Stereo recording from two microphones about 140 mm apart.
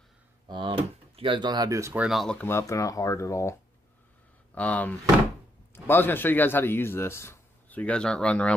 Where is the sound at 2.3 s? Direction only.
15° left (ahead or behind).